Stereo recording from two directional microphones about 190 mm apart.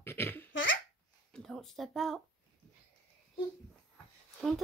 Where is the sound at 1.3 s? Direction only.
5° left (ahead or behind).